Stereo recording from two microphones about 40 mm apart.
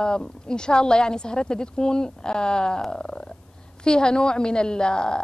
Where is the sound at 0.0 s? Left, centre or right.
Centre.